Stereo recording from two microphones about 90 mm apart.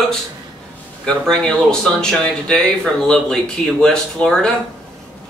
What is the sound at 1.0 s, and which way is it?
Speech, 5° left (ahead or behind).